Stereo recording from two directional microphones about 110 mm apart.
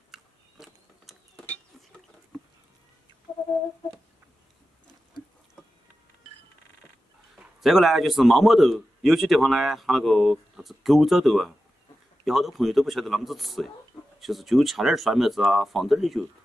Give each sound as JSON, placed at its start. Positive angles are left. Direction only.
{"t": 0.1, "sound": "gears", "side_deg": 0}
{"t": 7.3, "sound": "a man's voice", "side_deg": 0}